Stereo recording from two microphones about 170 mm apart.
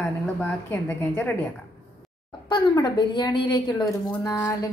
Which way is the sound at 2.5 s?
25° left (ahead or behind).